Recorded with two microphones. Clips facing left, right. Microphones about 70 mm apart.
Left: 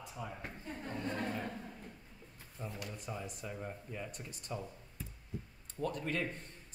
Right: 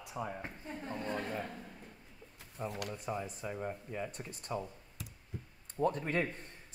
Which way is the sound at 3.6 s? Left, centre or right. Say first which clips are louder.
Right 4 dB; centre.